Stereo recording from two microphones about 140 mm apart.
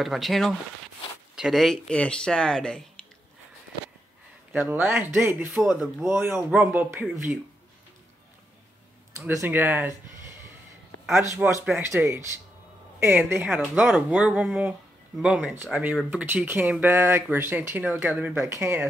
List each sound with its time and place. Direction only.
0.0 s speech: centre (ahead or behind)
4.5 s speech: 10° right (ahead or behind)
5.5 s speech: centre (ahead or behind)
6.1 s speech: 15° right (ahead or behind)
9.4 s speech: 15° right (ahead or behind)
11.4 s speech: 10° right (ahead or behind)